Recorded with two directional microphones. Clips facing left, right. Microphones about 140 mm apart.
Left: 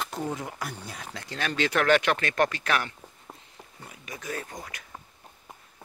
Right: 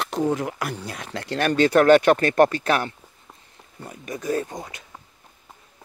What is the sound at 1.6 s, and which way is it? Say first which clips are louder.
Speech: right 8 dB; 45° right (ahead or behind).